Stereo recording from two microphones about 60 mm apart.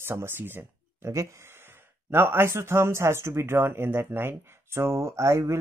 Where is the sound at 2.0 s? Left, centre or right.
Right.